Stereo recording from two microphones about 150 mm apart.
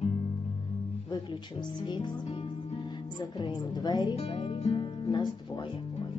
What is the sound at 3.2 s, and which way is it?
Speech, 25° left (ahead or behind).